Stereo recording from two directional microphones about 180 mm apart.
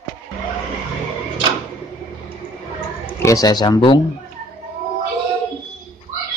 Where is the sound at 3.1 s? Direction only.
15° left (ahead or behind).